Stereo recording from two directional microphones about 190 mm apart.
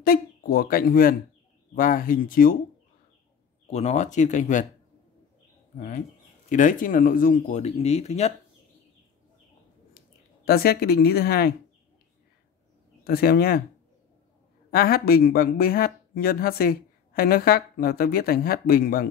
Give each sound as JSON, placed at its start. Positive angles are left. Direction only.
{"t": 0.0, "sound": "speech", "side_deg": 50}
{"t": 3.6, "sound": "speech", "side_deg": 35}
{"t": 5.8, "sound": "speech", "side_deg": 45}
{"t": 9.9, "sound": "speech", "side_deg": 55}
{"t": 13.0, "sound": "speech", "side_deg": 50}
{"t": 14.7, "sound": "speech", "side_deg": 50}